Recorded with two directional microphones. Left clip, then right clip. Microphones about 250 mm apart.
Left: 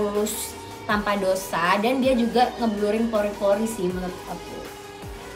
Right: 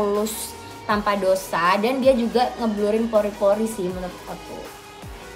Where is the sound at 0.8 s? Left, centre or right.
Centre.